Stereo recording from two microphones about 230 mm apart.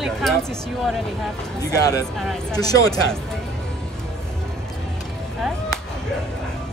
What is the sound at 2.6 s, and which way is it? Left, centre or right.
Speech, centre.